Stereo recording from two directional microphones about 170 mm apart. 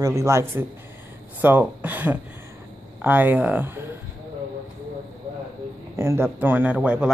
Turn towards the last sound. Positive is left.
turn(degrees=-10)  # may be behind; listen again after turning